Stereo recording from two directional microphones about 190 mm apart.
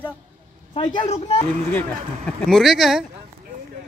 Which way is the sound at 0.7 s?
25° left (ahead or behind).